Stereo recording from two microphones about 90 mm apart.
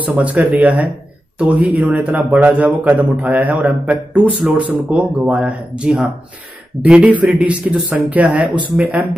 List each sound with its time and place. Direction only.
0.0 s a man's voice: 15° right (ahead or behind)